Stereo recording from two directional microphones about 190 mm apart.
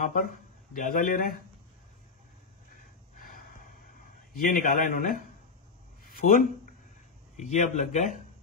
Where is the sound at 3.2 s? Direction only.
45° left (ahead or behind).